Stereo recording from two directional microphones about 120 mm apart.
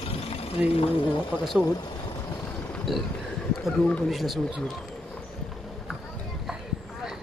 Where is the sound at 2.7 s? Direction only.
Centre (ahead or behind).